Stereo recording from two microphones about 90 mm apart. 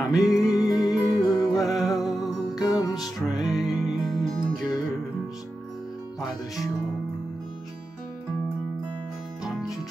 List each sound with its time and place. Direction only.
0.1 s music: 5° right (ahead or behind)
2.5 s music: 45° left (ahead or behind)
3.3 s music: 5° right (ahead or behind)
9.4 s music: 5° right (ahead or behind)